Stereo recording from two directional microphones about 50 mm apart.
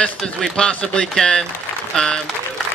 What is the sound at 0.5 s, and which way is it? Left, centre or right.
A man's voice, centre.